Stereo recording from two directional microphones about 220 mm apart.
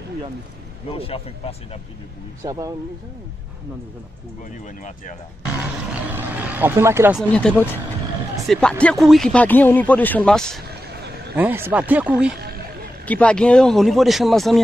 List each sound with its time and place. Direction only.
0.8 s speech: 25° left (ahead or behind)
2.4 s speech: 15° right (ahead or behind)
4.5 s speech: 35° left (ahead or behind)
5.9 s vehicle: 10° right (ahead or behind)
7.2 s speech: 5° left (ahead or behind)
11.3 s speech: 10° right (ahead or behind)
13.0 s speech: 5° left (ahead or behind)